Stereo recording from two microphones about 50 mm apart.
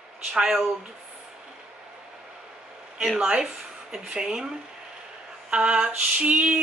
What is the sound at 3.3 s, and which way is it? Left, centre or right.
Speech, centre.